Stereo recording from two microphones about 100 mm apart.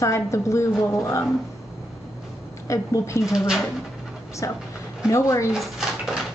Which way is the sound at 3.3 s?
5° right (ahead or behind).